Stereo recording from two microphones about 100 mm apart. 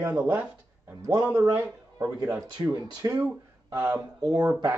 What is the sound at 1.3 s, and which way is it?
Speech, 30° right (ahead or behind).